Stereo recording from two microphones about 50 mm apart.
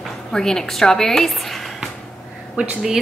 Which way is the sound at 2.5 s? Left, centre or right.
Right.